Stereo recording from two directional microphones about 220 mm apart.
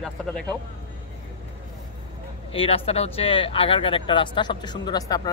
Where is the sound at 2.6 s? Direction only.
25° left (ahead or behind).